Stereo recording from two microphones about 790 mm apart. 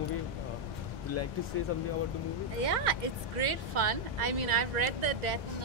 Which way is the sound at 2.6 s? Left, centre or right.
Right.